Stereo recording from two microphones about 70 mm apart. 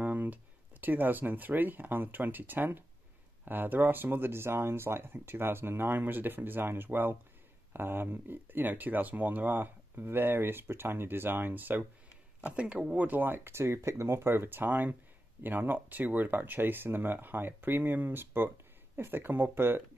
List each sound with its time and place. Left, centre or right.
0.0 s speech: right